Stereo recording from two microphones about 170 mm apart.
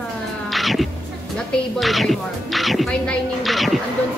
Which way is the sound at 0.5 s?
Centre (ahead or behind).